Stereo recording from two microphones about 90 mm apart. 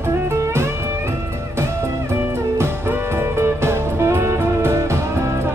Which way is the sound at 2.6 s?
25° right (ahead or behind).